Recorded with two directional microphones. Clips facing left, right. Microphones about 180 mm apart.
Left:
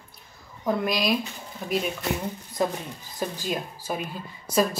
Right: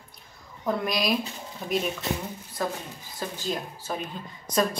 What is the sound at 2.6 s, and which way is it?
Speech, 20° left (ahead or behind).